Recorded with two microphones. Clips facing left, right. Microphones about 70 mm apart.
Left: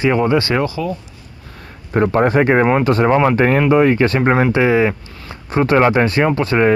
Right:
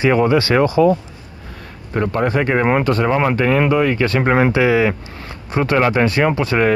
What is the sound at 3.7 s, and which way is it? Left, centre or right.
Speech, left.